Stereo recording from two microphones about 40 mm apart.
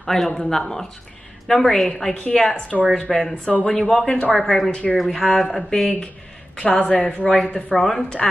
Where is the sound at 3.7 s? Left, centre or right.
Centre.